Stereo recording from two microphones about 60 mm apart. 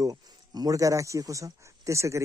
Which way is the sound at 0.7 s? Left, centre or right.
Right.